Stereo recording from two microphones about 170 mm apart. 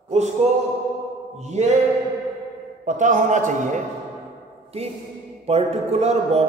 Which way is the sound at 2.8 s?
45° right (ahead or behind).